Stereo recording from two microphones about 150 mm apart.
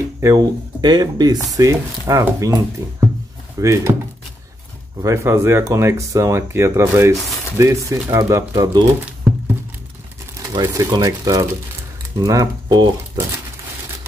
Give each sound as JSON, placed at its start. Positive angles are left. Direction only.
{"t": 0.2, "sound": "speech", "side_deg": -25}
{"t": 3.5, "sound": "speech", "side_deg": -20}
{"t": 5.0, "sound": "speech", "side_deg": -20}
{"t": 10.5, "sound": "speech", "side_deg": -25}